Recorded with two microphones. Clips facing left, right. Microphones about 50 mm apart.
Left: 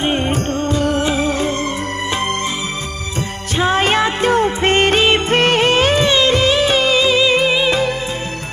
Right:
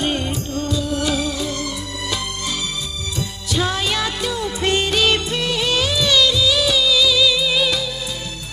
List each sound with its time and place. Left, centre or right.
0.0 s music of bollywood: left
0.3 s music of bollywood: left
0.9 s music: left
3.5 s music: left
5.3 s music of bollywood: left
6.3 s music: left